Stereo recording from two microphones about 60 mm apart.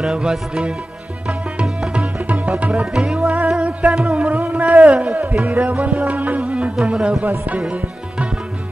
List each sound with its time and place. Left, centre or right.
0.0 s music: centre
1.2 s tabla: centre
2.6 s music: right
2.9 s music: centre
4.4 s carnatic music: right
4.9 s a sound: centre
5.2 s music: right; by 7.2 s centre
7.2 s music: right